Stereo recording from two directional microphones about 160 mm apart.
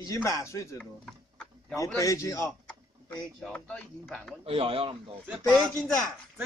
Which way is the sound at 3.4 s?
10° left (ahead or behind).